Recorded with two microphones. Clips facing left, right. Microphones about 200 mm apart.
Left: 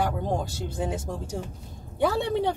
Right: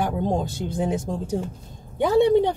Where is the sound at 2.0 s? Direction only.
15° right (ahead or behind).